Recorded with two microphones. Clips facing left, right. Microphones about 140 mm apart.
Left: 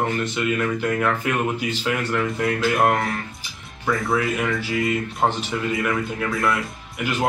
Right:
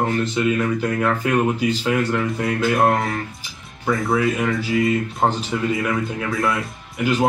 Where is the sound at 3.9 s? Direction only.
Centre (ahead or behind).